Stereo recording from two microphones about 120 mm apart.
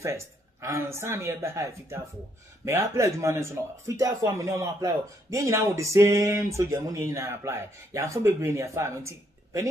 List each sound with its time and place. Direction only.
0.0 s speech: 25° right (ahead or behind)